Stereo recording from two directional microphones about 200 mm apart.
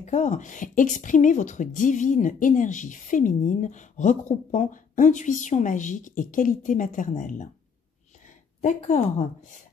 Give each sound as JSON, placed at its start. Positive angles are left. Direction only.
{"t": 0.0, "sound": "speech", "side_deg": 35}
{"t": 8.5, "sound": "speech", "side_deg": 35}